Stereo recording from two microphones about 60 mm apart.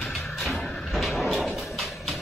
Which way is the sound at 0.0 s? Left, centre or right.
Centre.